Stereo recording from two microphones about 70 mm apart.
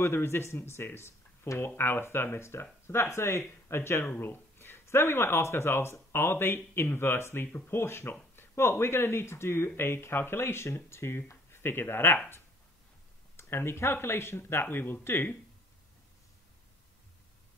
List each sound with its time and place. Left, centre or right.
0.0 s speech: left
13.4 s speech: left